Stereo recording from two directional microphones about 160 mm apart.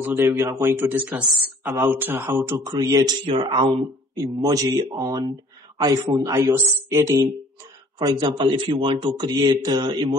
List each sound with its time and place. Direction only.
0.0 s speech: 15° right (ahead or behind); by 3.7 s 30° right (ahead or behind)
4.1 s speech: 20° right (ahead or behind)